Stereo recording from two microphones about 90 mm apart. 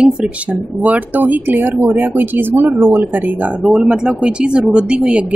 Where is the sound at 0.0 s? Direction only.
15° right (ahead or behind).